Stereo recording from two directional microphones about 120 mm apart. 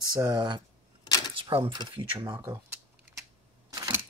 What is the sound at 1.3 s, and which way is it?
Speech, 45° right (ahead or behind).